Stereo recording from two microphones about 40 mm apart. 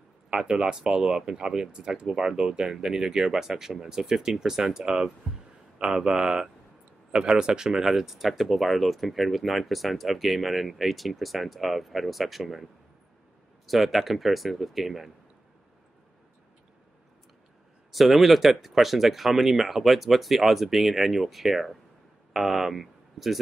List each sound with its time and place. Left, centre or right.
0.3 s speech: right; by 12.6 s centre
13.7 s speech: centre
17.9 s speech: centre